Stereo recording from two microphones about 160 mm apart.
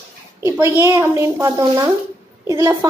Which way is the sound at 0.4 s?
20° right (ahead or behind).